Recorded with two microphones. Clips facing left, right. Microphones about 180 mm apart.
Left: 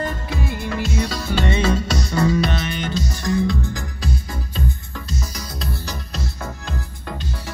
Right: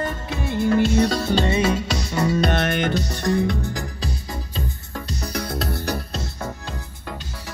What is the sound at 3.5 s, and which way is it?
Music, 40° right (ahead or behind).